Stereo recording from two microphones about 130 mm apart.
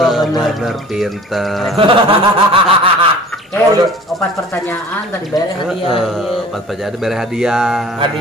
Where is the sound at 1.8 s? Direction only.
45° right (ahead or behind).